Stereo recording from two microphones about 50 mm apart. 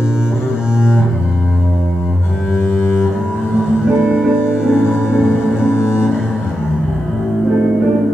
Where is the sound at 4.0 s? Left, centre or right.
Centre.